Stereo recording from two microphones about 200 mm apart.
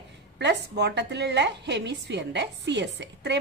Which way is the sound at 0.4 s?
55° right (ahead or behind).